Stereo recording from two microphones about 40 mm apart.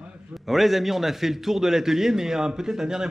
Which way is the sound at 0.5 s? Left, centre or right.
Centre.